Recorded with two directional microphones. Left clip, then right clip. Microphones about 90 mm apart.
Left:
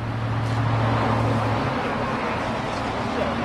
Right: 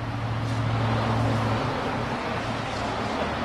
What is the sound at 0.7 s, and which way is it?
Vehicle, 30° left (ahead or behind).